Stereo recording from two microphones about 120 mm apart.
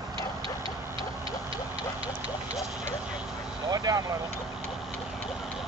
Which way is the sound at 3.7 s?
30° right (ahead or behind).